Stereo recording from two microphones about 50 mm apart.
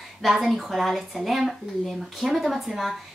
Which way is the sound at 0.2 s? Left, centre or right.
Centre.